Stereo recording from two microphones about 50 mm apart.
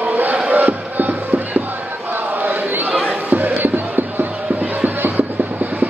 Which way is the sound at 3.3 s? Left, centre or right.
Right.